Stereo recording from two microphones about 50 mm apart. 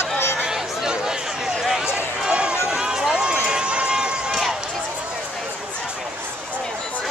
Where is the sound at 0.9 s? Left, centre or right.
Centre.